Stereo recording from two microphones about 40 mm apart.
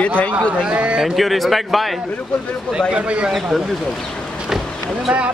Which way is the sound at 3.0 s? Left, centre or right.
Right.